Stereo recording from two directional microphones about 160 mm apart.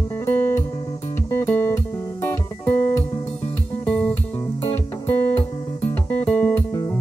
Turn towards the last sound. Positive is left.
turn(degrees=10)  # may be behind; listen again after turning